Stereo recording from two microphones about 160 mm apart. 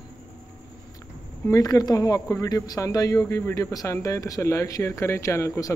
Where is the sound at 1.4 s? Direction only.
20° left (ahead or behind).